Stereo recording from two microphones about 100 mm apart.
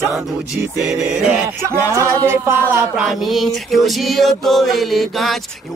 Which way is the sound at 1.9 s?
30° right (ahead or behind).